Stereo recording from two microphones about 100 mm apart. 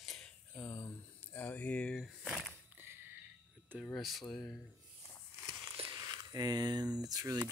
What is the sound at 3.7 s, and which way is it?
Speech, 10° left (ahead or behind).